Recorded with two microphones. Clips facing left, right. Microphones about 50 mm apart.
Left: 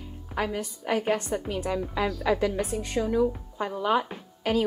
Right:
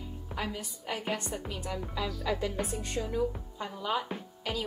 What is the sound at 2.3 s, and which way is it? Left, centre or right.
Speech, left.